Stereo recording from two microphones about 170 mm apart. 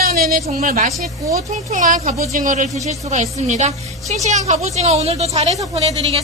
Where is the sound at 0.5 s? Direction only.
55° right (ahead or behind).